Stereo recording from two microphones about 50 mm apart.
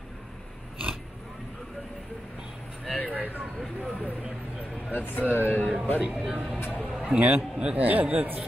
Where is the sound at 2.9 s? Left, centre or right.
Left.